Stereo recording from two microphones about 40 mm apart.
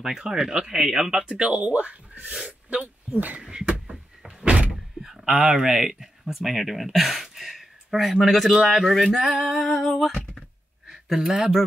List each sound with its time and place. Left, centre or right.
0.0 s speech: centre
1.2 s speech: right
3.8 s a sound: centre
5.0 s speech: centre
8.3 s female singing: centre
11.1 s speech: centre